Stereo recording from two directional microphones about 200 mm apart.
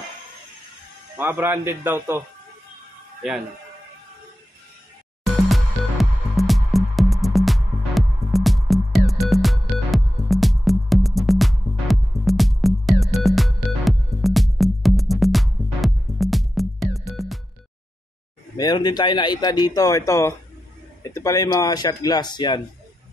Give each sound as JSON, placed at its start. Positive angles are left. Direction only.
{"t": 1.1, "sound": "speech", "side_deg": -10}
{"t": 5.3, "sound": "music", "side_deg": 0}
{"t": 18.6, "sound": "speech", "side_deg": 20}